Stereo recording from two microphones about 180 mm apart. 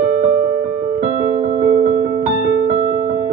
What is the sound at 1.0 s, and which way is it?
Music, 45° right (ahead or behind).